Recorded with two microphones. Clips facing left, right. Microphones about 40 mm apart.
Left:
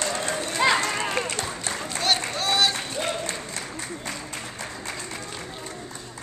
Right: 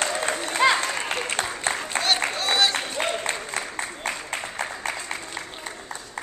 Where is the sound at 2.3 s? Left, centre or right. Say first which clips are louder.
Even; centre.